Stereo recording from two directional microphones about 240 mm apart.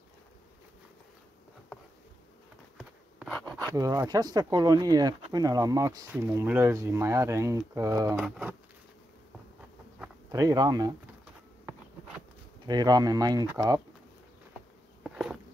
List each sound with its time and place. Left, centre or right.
2.8 s a sound: centre
3.7 s speech: centre
8.2 s speech: centre
10.3 s speech: centre
12.6 s speech: centre
15.0 s bee: centre